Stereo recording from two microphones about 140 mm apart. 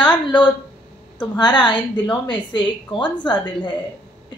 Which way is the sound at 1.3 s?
30° left (ahead or behind).